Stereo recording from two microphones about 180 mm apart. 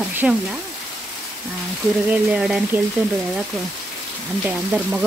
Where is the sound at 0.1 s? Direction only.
10° right (ahead or behind).